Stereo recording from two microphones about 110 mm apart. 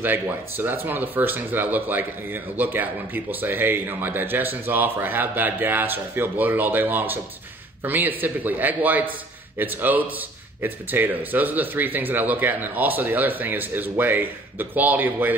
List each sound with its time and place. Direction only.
0.0 s speech: 20° right (ahead or behind)